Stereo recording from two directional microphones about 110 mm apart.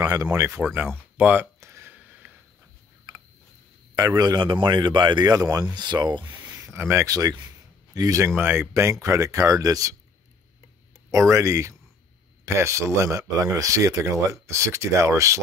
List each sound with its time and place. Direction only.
0.0 s speech: 35° right (ahead or behind)
0.3 s speech: 15° right (ahead or behind)
1.1 s a sound: 15° right (ahead or behind)
3.9 s speech: 30° right (ahead or behind)
6.5 s speech: 25° right (ahead or behind)
8.4 s speech: 20° right (ahead or behind)
11.1 s speech: 30° right (ahead or behind)